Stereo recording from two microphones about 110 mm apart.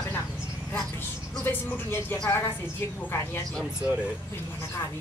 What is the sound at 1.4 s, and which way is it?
Speech, 20° left (ahead or behind).